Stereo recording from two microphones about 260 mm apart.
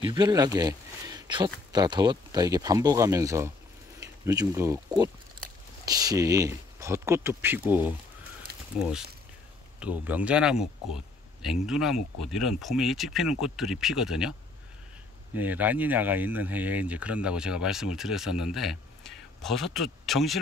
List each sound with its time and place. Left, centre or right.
0.0 s speech: centre
8.5 s a sound: right
9.8 s speech: centre
15.3 s speech: centre